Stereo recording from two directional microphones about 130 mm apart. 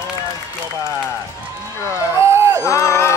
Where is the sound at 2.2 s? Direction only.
20° right (ahead or behind).